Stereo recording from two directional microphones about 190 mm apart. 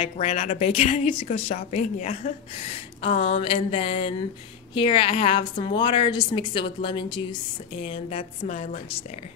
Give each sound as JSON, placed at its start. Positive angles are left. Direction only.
{"t": 0.0, "sound": "a woman's voice", "side_deg": 35}